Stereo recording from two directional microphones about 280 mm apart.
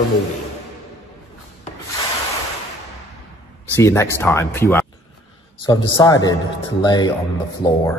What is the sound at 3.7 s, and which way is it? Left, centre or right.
Mantra, centre.